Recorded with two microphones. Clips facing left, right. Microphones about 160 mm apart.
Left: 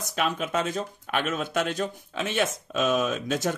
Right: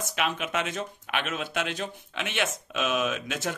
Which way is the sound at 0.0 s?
35° left (ahead or behind).